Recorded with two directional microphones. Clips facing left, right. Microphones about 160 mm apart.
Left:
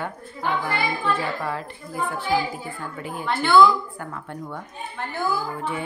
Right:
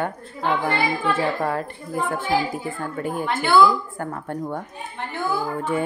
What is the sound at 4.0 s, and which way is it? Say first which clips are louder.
Speech: right 6 dB; 45° right (ahead or behind).